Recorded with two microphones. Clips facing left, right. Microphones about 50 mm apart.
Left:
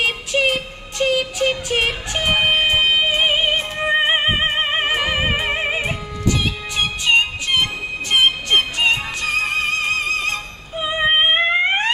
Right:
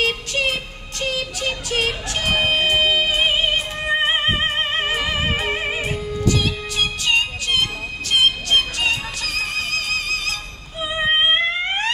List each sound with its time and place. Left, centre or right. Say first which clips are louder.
0.0 s music: left 2 dB; centre